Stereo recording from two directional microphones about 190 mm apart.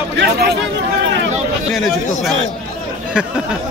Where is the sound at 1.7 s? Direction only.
Centre (ahead or behind).